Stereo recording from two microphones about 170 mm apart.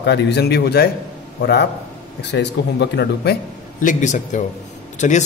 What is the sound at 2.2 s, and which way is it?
Speech, 90° left.